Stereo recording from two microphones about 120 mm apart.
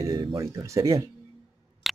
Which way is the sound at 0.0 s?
30° right (ahead or behind).